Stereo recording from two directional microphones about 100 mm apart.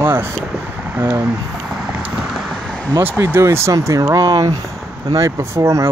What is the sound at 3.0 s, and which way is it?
Speech, 20° right (ahead or behind).